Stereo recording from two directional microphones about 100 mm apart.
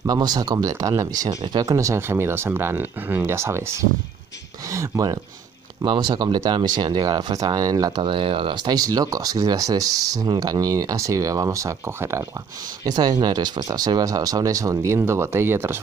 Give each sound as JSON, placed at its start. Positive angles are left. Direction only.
{"t": 0.0, "sound": "speech", "side_deg": -40}
{"t": 5.8, "sound": "speech", "side_deg": -50}
{"t": 8.0, "sound": "speech", "side_deg": -60}
{"t": 12.8, "sound": "speech", "side_deg": -45}